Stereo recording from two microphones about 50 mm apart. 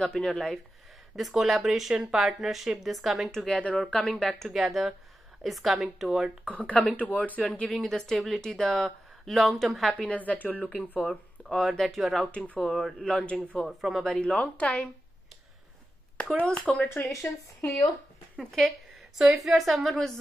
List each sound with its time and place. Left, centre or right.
0.0 s speech: centre
1.1 s speech: centre
3.3 s a woman's voice: centre
4.2 s speech: centre
6.5 s a woman's voice: left
7.6 s speech: centre
9.9 s a woman's voice: left
11.0 s speech: centre
13.1 s a woman's voice: left
13.7 s speech: centre
14.0 s a woman's voice: centre
16.4 s a woman's voice: centre
17.0 s a woman's voice: left
18.4 s speech: centre